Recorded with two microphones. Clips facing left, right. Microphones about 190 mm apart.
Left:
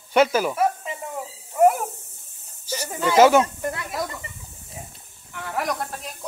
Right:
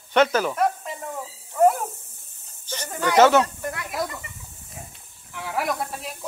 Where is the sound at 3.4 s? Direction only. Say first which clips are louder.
Left 2 dB; 25° left (ahead or behind).